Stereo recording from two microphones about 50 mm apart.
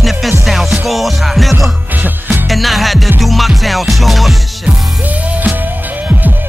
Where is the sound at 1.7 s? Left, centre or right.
Right.